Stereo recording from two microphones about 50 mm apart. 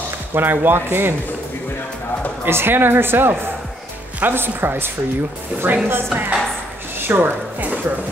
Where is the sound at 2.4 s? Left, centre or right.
Right.